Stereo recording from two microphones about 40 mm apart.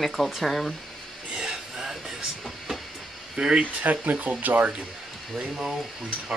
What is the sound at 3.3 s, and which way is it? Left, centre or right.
Speech, centre.